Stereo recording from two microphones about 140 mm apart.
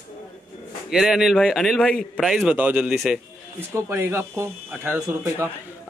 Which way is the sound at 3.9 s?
15° right (ahead or behind).